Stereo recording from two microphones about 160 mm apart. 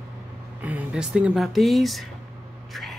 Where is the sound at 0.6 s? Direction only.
5° right (ahead or behind).